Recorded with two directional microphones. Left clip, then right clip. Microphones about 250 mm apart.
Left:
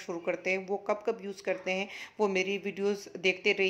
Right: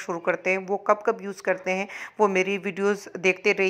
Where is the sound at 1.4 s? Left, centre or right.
Centre.